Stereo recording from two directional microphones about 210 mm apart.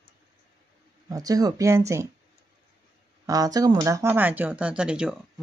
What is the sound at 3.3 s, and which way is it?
Speech, 15° right (ahead or behind).